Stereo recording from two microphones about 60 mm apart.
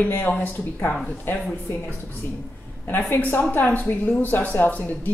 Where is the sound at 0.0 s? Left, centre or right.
Left.